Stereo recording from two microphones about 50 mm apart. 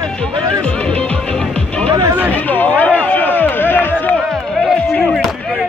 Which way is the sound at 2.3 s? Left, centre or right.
Left.